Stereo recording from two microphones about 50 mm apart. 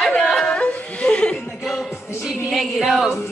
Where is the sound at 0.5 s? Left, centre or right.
Left.